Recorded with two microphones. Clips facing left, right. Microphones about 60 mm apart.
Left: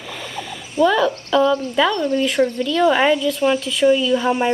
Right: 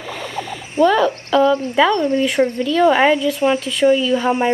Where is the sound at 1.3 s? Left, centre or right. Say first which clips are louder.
Right 2 dB; right.